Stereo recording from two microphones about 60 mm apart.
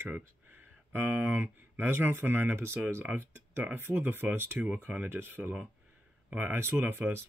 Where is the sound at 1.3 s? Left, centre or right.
Right.